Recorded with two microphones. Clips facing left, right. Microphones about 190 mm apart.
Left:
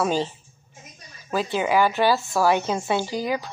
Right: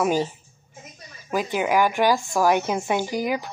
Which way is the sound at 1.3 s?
15° right (ahead or behind).